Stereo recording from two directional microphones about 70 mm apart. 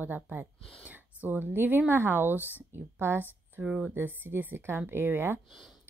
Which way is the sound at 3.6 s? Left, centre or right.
Centre.